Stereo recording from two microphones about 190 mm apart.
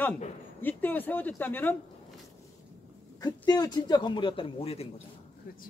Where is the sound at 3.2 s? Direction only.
20° left (ahead or behind).